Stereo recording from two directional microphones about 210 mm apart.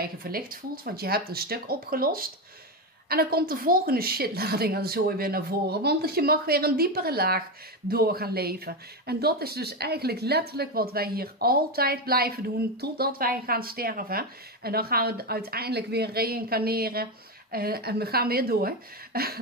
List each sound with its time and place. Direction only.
0.0 s speech: 45° right (ahead or behind)